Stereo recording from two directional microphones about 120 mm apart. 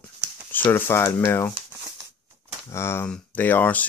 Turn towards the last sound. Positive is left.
turn(degrees=15)  # may be behind; listen again after turning